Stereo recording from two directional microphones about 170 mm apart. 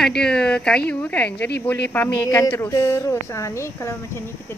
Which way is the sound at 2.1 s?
20° left (ahead or behind).